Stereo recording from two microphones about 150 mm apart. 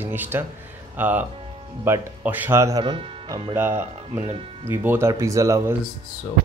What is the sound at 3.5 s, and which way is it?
Speech, 15° right (ahead or behind).